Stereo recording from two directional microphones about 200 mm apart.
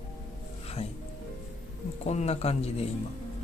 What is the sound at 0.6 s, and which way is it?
Music, 30° left (ahead or behind).